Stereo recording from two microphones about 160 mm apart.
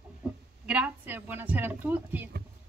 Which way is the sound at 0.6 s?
10° right (ahead or behind).